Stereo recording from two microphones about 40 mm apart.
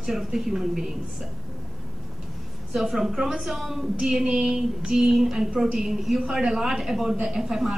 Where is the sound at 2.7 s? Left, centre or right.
Centre.